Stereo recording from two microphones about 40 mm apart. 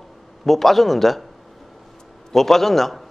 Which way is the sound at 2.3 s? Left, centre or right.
Centre.